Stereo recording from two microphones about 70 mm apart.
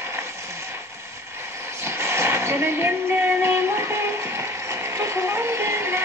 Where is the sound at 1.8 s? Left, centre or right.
Right.